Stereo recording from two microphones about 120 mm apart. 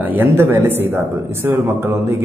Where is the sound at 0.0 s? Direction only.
15° right (ahead or behind).